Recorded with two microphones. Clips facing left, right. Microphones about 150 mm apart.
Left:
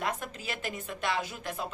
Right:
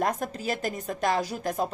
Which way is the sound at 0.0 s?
40° right (ahead or behind).